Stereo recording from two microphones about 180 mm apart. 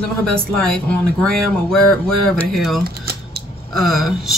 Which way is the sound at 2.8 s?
60° right (ahead or behind).